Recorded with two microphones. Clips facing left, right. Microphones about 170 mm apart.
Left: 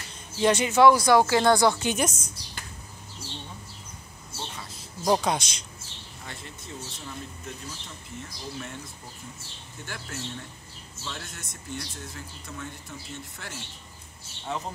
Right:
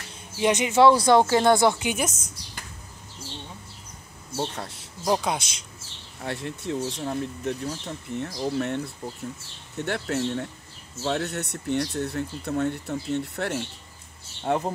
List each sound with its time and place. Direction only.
0.4 s a woman's voice: 15° right (ahead or behind)
4.4 s speech: 70° right (ahead or behind)
5.0 s speech: 5° right (ahead or behind)
6.2 s speech: 70° right (ahead or behind)
14.4 s speech: 55° right (ahead or behind)